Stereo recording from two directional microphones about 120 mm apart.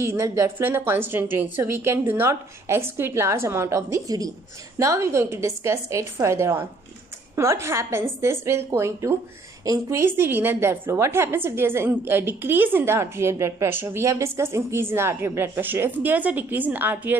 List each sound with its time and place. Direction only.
0.0 s a woman's voice: 20° right (ahead or behind)